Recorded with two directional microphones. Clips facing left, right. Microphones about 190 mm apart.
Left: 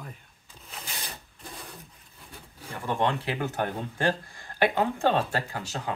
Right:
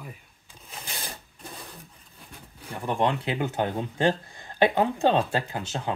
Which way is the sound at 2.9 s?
15° right (ahead or behind).